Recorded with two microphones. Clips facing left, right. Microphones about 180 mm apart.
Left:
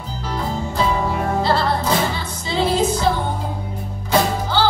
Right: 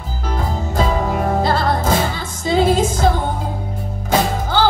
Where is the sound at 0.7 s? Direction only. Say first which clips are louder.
Right 2 dB; 45° right (ahead or behind).